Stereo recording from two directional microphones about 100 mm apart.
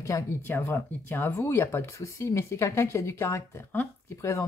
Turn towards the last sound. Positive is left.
turn(degrees=30)  # may be behind; listen again after turning